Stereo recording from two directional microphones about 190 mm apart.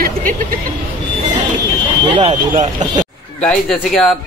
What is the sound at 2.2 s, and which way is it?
Speech, 35° right (ahead or behind).